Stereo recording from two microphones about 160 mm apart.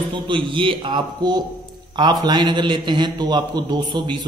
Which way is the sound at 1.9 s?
25° right (ahead or behind).